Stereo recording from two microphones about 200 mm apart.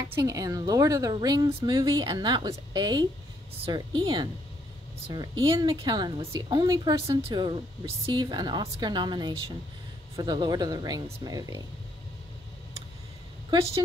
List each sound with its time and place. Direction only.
0.0 s speech: 15° right (ahead or behind)